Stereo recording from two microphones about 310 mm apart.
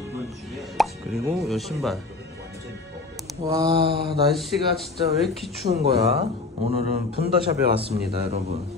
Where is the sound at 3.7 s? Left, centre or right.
Right.